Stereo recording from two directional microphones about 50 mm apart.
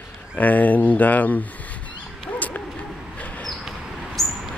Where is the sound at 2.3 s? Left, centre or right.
Left.